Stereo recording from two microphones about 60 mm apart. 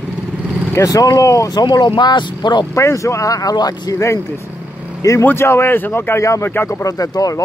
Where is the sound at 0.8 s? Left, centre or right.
Left.